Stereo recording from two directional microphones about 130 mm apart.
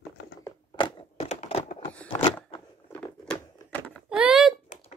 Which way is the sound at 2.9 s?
10° left (ahead or behind).